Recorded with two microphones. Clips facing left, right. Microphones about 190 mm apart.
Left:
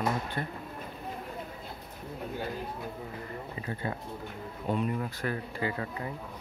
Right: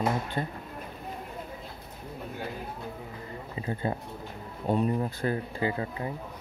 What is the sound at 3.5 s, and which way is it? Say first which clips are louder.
Speech: right 6 dB; 25° right (ahead or behind).